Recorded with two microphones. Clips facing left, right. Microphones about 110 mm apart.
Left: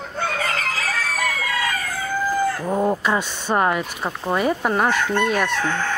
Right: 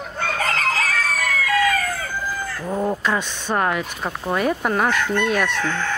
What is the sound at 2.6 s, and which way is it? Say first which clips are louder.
Speech: left 2 dB; 15° left (ahead or behind).